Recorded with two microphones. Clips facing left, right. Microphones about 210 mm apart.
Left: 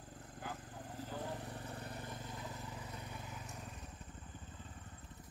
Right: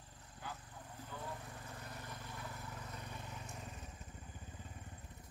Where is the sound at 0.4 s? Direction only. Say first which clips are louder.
Left 3 dB; 45° left (ahead or behind); by 3.9 s centre (ahead or behind).